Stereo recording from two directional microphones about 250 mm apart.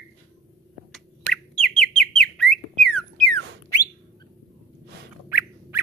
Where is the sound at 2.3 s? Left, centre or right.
Centre.